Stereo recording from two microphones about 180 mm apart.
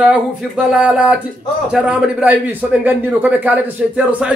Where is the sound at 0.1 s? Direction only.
5° right (ahead or behind).